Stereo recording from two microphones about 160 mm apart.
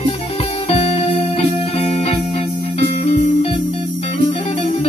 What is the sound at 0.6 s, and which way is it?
Music, 40° left (ahead or behind).